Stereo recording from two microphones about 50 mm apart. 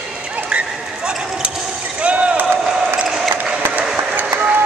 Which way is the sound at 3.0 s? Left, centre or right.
Centre.